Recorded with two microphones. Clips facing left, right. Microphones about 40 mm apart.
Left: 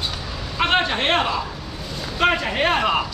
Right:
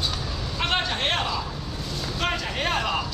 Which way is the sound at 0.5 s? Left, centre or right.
Left.